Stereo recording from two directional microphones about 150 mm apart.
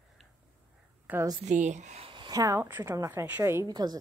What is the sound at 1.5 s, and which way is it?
Speech, 55° right (ahead or behind).